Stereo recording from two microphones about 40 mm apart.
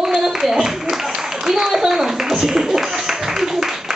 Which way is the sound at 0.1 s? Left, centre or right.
Centre.